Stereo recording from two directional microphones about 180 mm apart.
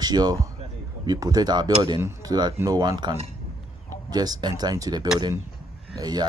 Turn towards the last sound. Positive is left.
turn(degrees=-20)  # may be behind; listen again after turning